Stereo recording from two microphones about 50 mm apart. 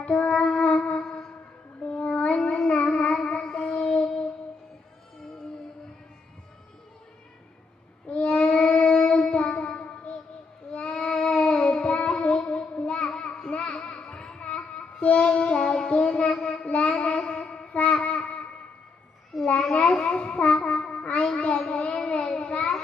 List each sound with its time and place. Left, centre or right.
0.0 s music: left
1.8 s child singing: left
2.8 s child singing: left
8.1 s child singing: left
19.3 s child singing: centre
19.7 s child singing: left